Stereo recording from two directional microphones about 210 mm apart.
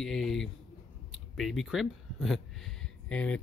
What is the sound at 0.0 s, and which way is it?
Speech, centre (ahead or behind).